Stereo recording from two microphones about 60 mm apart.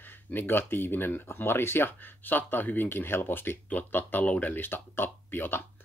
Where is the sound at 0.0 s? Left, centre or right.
Left.